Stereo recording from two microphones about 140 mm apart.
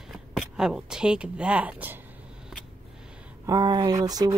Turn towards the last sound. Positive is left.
turn(degrees=-25)  # may be behind; listen again after turning